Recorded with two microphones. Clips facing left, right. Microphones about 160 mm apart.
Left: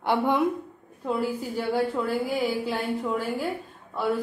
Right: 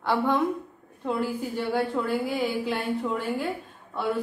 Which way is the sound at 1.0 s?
5° left (ahead or behind).